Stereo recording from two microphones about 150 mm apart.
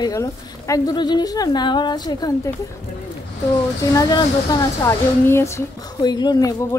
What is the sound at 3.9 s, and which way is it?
Speech, 25° left (ahead or behind).